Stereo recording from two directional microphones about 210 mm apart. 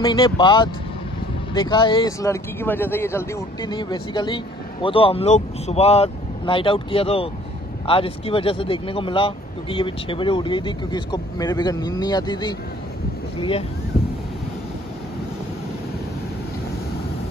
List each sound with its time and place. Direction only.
0.0 s speech: 20° left (ahead or behind)